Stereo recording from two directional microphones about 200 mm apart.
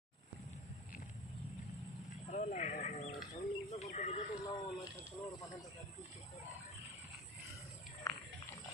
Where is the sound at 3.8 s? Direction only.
35° left (ahead or behind).